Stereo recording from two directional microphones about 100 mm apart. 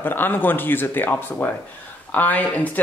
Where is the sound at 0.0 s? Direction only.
20° left (ahead or behind).